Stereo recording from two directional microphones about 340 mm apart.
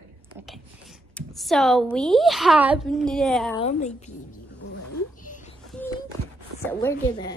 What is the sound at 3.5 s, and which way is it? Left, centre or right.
Speech, centre.